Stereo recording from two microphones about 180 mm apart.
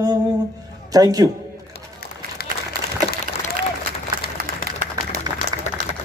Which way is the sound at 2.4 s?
60° left (ahead or behind).